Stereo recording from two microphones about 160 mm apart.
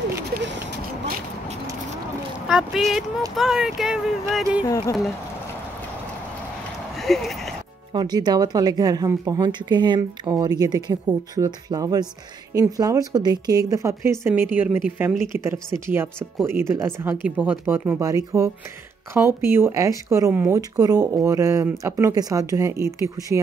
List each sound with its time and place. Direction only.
2.4 s speech: 5° right (ahead or behind)
7.0 s a sound: centre (ahead or behind)
7.9 s speech: 25° right (ahead or behind)